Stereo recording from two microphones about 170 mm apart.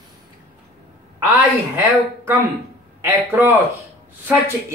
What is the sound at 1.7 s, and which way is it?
Speech, 10° right (ahead or behind).